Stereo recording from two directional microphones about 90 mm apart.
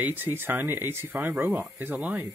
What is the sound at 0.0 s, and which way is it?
Speech, 20° right (ahead or behind).